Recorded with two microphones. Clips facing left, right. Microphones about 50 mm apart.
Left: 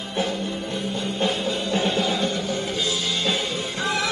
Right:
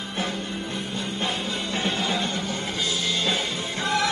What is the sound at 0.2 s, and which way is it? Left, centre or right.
Music, right.